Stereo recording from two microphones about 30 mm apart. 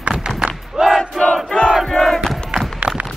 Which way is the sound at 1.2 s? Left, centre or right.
Left.